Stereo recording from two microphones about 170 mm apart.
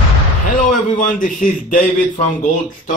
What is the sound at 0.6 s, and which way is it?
A man's voice, 50° left (ahead or behind).